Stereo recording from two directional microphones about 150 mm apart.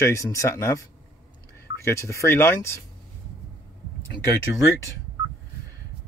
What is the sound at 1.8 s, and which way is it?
Speech, 20° left (ahead or behind).